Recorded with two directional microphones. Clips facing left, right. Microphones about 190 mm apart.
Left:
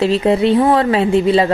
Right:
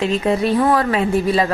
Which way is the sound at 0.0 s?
30° left (ahead or behind).